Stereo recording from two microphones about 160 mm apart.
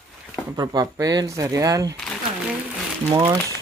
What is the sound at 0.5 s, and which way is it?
Speech, 25° right (ahead or behind).